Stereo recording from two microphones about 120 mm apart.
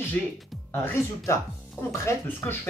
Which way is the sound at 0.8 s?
20° left (ahead or behind).